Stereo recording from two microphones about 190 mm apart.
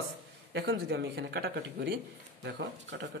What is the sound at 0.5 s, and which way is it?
Speech, 70° right (ahead or behind).